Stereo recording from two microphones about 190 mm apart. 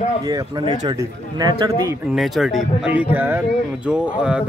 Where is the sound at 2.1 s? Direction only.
Centre (ahead or behind).